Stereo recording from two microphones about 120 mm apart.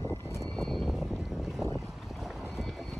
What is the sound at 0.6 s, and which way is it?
Boat, centre (ahead or behind).